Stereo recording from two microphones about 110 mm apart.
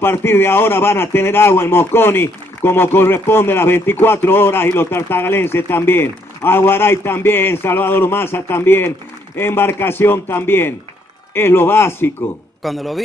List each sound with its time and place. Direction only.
0.0 s speech: 20° left (ahead or behind)
12.6 s a man's voice: centre (ahead or behind)